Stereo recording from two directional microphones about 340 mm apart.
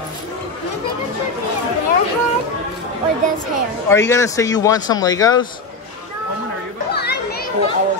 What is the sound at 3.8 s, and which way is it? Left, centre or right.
Speech, centre.